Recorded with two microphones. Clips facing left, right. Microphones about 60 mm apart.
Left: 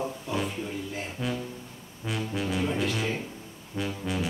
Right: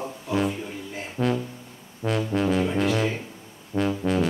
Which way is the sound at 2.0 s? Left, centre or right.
Centre.